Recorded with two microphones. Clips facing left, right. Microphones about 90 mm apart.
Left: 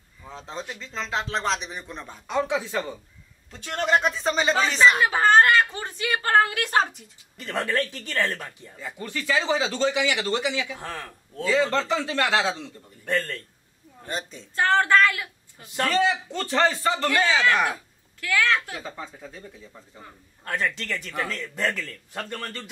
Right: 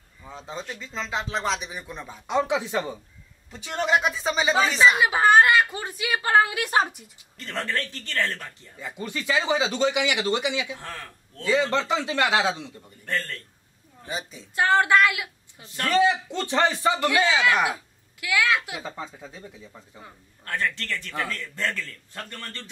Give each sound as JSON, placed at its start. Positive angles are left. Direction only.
{"t": 0.3, "sound": "speech", "side_deg": -5}
{"t": 2.2, "sound": "speech", "side_deg": -15}
{"t": 3.5, "sound": "speech", "side_deg": -5}
{"t": 7.3, "sound": "a man's voice", "side_deg": 10}
{"t": 8.7, "sound": "speech", "side_deg": -20}
{"t": 10.8, "sound": "a man's voice", "side_deg": 10}
{"t": 11.7, "sound": "speech", "side_deg": -15}
{"t": 13.0, "sound": "a man's voice", "side_deg": 10}
{"t": 14.0, "sound": "speech", "side_deg": -5}
{"t": 15.6, "sound": "a man's voice", "side_deg": 15}
{"t": 15.9, "sound": "speech", "side_deg": -15}
{"t": 20.4, "sound": "a man's voice", "side_deg": 15}